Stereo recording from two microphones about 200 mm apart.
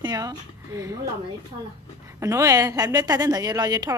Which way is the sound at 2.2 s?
15° right (ahead or behind).